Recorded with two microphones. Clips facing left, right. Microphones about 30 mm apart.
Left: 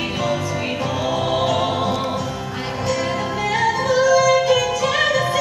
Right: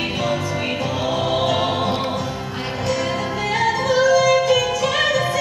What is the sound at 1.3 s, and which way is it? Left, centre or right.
Music, centre.